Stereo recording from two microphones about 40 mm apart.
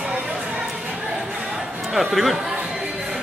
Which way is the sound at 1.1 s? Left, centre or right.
Centre.